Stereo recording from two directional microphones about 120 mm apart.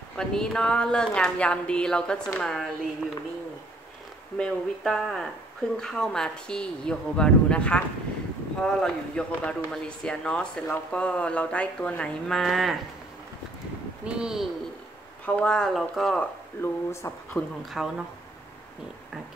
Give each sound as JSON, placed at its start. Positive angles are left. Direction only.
{"t": 0.1, "sound": "speech", "side_deg": 5}
{"t": 4.4, "sound": "speech", "side_deg": 5}
{"t": 14.0, "sound": "speech", "side_deg": -5}
{"t": 15.2, "sound": "speech", "side_deg": 10}
{"t": 16.6, "sound": "speech", "side_deg": 20}
{"t": 17.6, "sound": "speech", "side_deg": 0}